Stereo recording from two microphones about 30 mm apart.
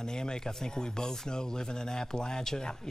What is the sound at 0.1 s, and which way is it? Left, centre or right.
Speech, left.